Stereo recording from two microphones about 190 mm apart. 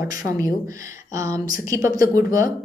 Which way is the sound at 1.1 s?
15° right (ahead or behind).